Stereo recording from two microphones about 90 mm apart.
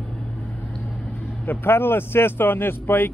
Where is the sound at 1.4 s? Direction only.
20° left (ahead or behind).